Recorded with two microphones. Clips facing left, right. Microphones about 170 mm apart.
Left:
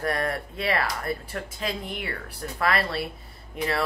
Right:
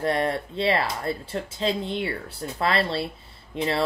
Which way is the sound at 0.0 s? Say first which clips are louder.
Right 3 dB; 25° right (ahead or behind).